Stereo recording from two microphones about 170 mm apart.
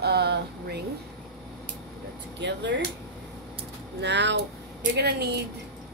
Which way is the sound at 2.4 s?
90° right.